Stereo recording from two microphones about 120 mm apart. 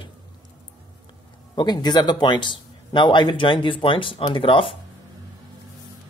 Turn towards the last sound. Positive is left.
turn(degrees=45)  # may be behind; listen again after turning